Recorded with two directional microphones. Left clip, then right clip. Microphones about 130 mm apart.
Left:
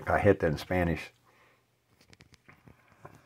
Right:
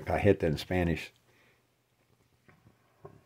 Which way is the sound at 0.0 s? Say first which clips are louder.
Left 2 dB; 25° right (ahead or behind).